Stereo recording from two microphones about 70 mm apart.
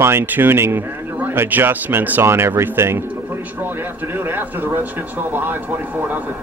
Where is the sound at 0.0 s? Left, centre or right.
Right.